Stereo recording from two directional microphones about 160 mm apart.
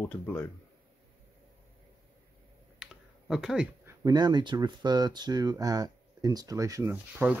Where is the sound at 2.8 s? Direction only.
5° right (ahead or behind).